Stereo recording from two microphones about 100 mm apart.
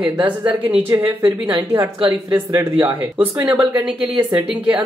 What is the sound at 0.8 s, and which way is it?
A woman's voice, 25° right (ahead or behind).